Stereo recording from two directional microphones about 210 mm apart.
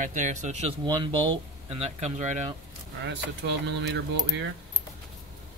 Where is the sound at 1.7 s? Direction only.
30° right (ahead or behind).